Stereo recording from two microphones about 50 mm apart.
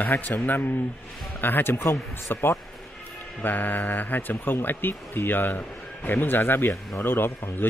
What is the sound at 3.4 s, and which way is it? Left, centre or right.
Speech, left.